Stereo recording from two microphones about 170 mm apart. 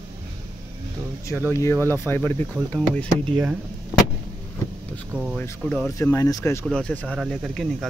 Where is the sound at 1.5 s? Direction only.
15° left (ahead or behind).